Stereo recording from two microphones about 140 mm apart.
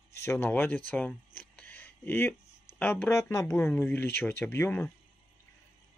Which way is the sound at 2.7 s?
15° left (ahead or behind).